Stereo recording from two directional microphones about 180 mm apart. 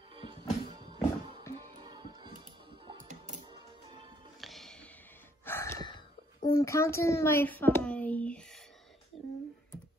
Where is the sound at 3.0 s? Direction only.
45° right (ahead or behind).